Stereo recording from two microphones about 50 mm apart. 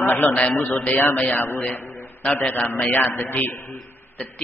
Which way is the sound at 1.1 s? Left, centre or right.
Left.